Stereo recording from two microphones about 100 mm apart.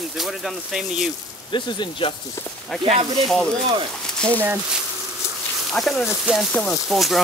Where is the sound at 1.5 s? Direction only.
50° left (ahead or behind).